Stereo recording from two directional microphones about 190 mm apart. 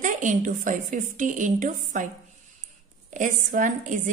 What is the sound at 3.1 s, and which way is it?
Speech, 45° right (ahead or behind).